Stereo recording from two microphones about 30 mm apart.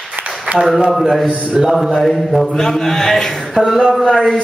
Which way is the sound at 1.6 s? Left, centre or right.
Right.